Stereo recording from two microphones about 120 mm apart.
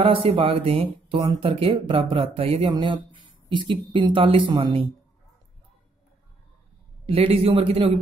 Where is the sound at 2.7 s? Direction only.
40° right (ahead or behind).